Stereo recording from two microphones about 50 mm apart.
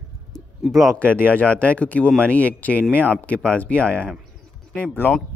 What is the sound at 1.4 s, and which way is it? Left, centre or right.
Speech, left.